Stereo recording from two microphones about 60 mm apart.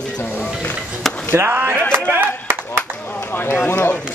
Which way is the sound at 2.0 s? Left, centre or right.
Right.